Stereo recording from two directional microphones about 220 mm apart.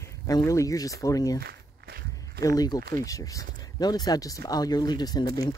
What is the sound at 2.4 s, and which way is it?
Speech, 15° left (ahead or behind).